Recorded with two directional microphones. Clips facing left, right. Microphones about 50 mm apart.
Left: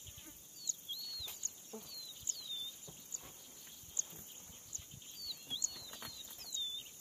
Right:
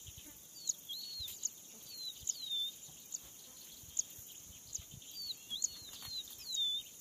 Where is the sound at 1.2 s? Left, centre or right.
Left.